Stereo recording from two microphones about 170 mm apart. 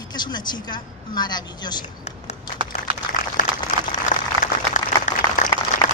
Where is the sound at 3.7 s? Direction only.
50° left (ahead or behind).